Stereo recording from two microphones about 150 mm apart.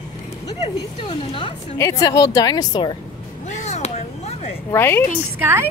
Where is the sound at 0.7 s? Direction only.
25° left (ahead or behind).